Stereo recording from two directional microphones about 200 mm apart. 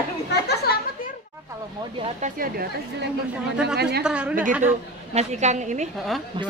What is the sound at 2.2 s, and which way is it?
Speech, 45° right (ahead or behind).